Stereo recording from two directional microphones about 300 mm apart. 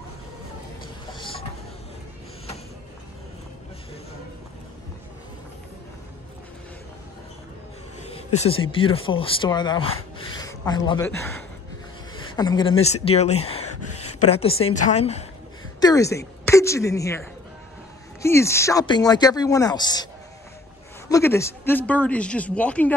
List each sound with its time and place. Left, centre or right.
1.1 s a sound: centre
8.0 s speech: left
10.1 s rub: centre
12.4 s a woman's voice: centre
13.7 s a sound: left
14.3 s a woman's voice: centre
15.8 s a woman's voice: centre
21.1 s speech: centre